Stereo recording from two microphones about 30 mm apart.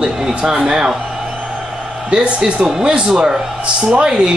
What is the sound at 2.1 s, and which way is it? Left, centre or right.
Speech, right.